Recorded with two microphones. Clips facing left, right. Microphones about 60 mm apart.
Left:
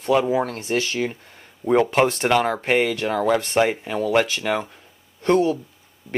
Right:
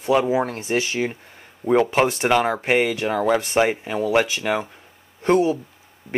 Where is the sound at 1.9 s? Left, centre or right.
Centre.